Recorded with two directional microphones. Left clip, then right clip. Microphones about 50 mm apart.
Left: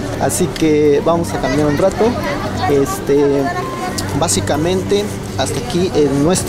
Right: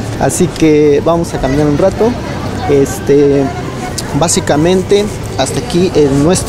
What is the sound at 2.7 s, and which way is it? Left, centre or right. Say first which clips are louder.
Speech: right 6 dB; right.